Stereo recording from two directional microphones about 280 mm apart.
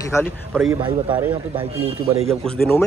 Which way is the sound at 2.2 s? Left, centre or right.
Centre.